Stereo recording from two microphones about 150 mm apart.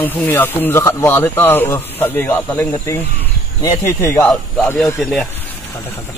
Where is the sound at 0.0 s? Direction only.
15° left (ahead or behind).